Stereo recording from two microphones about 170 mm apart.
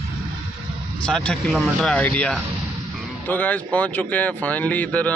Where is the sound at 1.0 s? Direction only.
5° left (ahead or behind).